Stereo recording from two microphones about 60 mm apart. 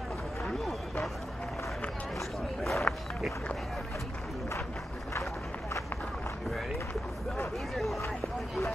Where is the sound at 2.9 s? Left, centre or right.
Left.